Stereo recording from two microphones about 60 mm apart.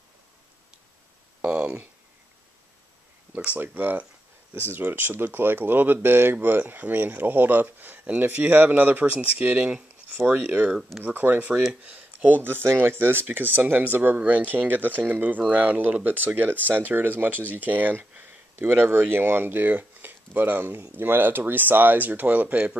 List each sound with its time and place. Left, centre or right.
1.4 s speech: right
3.5 s speech: right